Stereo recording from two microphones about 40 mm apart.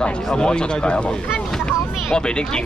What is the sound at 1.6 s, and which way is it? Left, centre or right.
Vehicle, left.